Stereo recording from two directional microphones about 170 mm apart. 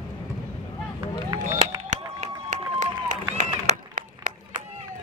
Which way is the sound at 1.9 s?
45° right (ahead or behind).